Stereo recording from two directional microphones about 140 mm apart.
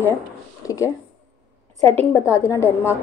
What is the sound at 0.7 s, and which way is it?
Speech, 20° left (ahead or behind).